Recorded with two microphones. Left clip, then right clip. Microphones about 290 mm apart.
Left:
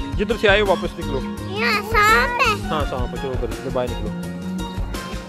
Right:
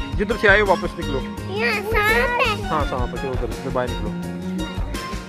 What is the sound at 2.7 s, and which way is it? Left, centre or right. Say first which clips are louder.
Speech: right 1 dB; centre.